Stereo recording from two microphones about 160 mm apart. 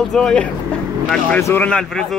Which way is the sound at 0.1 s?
5° left (ahead or behind).